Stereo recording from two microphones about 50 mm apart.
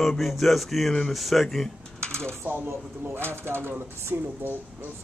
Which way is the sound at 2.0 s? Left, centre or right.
Centre.